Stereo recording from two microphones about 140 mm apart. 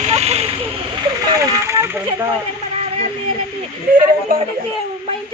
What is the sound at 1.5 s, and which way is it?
Speech, 20° right (ahead or behind).